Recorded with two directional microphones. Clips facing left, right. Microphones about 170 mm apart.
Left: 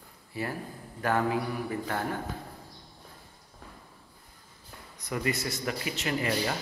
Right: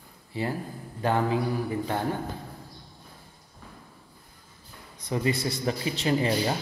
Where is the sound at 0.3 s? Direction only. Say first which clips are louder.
Right 4 dB; 25° right (ahead or behind).